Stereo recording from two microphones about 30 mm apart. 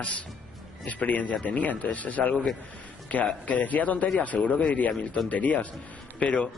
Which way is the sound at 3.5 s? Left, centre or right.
Left.